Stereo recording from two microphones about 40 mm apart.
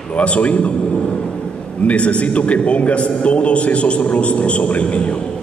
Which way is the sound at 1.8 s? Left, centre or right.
Left.